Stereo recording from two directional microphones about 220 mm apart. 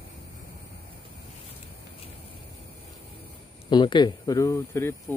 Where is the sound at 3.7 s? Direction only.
20° left (ahead or behind).